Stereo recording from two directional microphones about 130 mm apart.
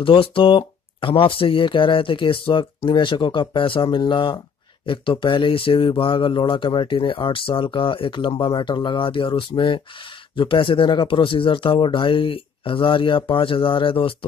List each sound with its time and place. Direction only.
0.0 s speech: 40° left (ahead or behind)